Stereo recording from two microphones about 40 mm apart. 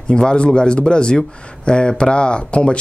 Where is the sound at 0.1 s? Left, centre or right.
Left.